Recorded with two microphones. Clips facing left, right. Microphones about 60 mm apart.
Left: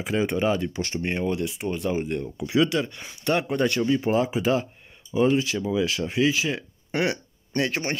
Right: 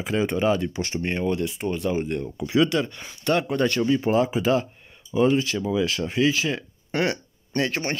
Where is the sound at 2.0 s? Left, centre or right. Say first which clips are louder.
Right 1 dB; centre.